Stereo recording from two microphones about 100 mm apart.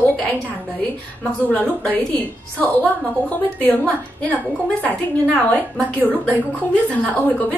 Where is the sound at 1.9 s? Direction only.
15° left (ahead or behind).